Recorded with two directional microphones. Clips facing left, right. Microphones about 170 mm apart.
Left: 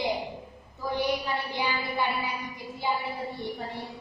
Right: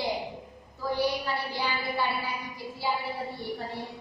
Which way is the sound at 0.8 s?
20° left (ahead or behind).